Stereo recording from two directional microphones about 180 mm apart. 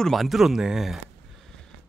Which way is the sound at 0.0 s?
Centre (ahead or behind).